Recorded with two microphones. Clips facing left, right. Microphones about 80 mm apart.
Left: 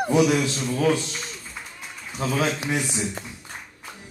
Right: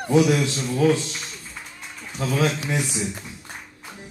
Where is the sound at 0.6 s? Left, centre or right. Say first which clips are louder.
Right 2 dB; centre.